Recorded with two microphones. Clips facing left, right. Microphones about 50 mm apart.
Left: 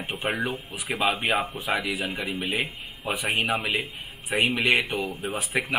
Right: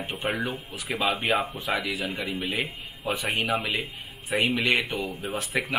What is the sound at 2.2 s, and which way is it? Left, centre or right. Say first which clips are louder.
Speech: left 1 dB; left.